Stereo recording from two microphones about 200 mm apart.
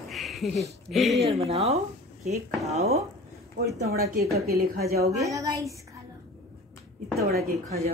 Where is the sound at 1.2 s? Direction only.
30° right (ahead or behind).